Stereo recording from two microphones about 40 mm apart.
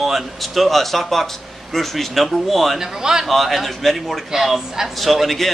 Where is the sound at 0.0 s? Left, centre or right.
Centre.